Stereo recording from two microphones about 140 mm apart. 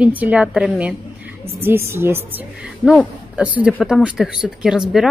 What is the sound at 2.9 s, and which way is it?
Speech, 5° right (ahead or behind).